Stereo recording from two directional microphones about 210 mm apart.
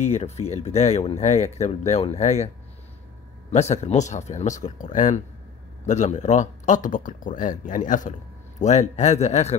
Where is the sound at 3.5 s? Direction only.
30° left (ahead or behind).